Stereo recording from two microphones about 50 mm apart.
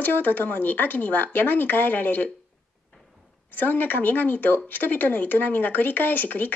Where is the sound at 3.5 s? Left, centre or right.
Left.